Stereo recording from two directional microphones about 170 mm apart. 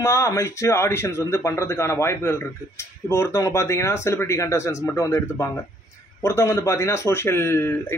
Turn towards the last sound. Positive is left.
turn(degrees=15)  # may be behind; listen again after turning